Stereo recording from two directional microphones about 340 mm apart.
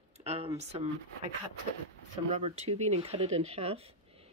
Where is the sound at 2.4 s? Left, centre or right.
Centre.